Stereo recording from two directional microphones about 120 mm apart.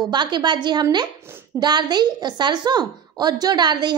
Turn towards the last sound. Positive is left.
turn(degrees=-35)  # may be behind; listen again after turning